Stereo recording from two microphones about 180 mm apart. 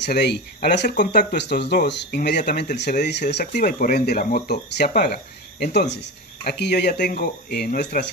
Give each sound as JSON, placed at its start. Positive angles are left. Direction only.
{"t": 0.0, "sound": "speech", "side_deg": 70}
{"t": 3.5, "sound": "speech", "side_deg": 50}